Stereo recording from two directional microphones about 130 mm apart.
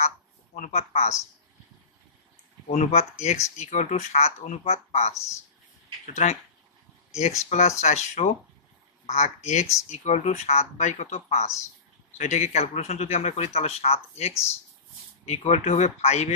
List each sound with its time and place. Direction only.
0.6 s speech: 55° left (ahead or behind)
2.7 s speech: 60° left (ahead or behind)
6.2 s speech: 60° left (ahead or behind)
7.4 s speech: 60° left (ahead or behind)